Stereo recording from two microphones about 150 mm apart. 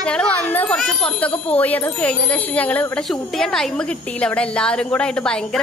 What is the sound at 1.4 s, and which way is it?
A woman's voice, 10° left (ahead or behind).